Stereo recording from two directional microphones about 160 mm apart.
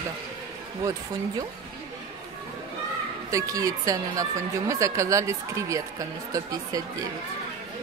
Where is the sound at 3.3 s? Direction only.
20° right (ahead or behind).